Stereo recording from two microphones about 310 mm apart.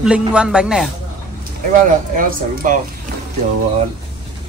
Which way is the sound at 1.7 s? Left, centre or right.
Right.